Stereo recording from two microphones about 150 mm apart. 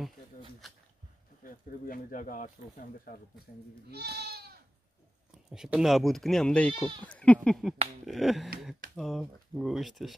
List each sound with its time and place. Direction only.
1.4 s speech: 65° left (ahead or behind)
3.9 s speech: 90° right
5.3 s speech: 5° right (ahead or behind)
8.0 s finger snapping: centre (ahead or behind)
8.9 s speech: centre (ahead or behind)